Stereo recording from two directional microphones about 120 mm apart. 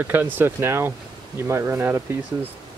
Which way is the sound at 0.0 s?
15° right (ahead or behind).